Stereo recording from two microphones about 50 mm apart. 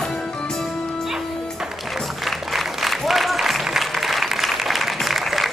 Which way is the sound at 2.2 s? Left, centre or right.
Centre.